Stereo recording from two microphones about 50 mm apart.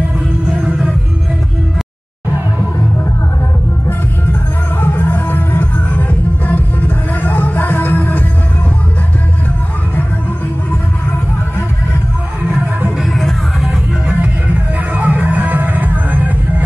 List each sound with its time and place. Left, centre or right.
4.8 s music: left
13.0 s music: centre
14.0 s music: right